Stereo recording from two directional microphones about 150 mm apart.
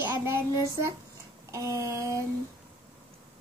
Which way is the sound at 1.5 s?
20° right (ahead or behind).